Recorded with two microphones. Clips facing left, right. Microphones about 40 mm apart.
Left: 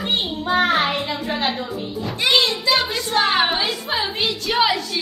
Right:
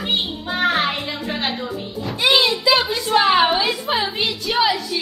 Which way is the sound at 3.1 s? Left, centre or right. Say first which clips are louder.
Right 4 dB; centre.